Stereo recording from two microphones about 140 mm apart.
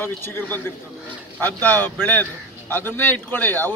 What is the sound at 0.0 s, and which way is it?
Speech, 15° left (ahead or behind).